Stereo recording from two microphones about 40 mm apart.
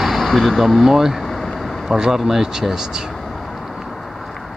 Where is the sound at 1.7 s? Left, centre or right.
Centre.